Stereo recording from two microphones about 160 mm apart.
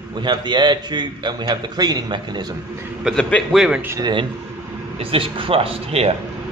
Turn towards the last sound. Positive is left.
turn(degrees=-40)  # may be behind; listen again after turning